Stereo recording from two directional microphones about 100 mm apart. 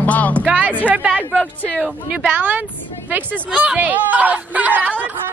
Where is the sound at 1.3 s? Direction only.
15° left (ahead or behind).